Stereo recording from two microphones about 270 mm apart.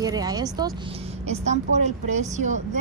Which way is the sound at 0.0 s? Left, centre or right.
Centre.